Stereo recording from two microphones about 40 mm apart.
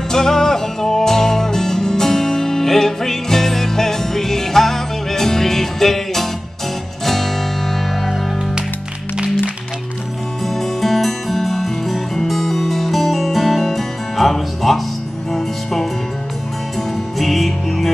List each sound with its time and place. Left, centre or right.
0.1 s music: centre
10.4 s music: centre
17.2 s music: centre